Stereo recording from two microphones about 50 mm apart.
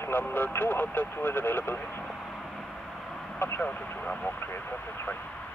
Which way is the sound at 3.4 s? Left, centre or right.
Left.